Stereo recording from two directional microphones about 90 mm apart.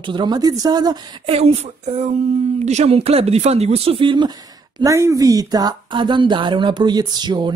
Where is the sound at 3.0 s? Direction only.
90° right; by 4.3 s 65° right (ahead or behind).